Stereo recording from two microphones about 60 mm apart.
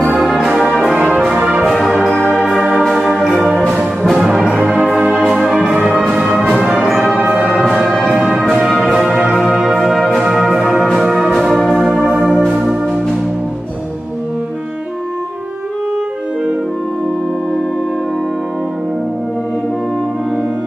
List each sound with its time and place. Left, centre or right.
0.2 s brass instrument: centre
0.8 s brass instrument: centre
1.6 s music: centre
2.5 s music: centre
4.6 s brass instrument: centre
5.3 s music: centre
5.7 s orchestra: centre
7.2 s music: right
8.3 s music: centre
8.7 s brass instrument: centre
10.6 s music: centre
12.3 s music: centre